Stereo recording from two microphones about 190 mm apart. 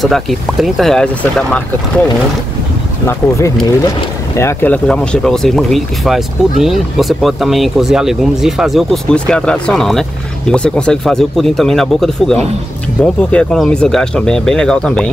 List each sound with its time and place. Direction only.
0.0 s speech: centre (ahead or behind)
3.1 s speech: 15° left (ahead or behind)